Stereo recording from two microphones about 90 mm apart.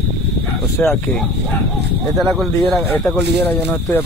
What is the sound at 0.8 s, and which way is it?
Speech, centre (ahead or behind).